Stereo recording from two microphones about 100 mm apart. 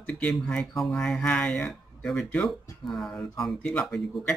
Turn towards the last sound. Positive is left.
turn(degrees=5)  # may be behind; listen again after turning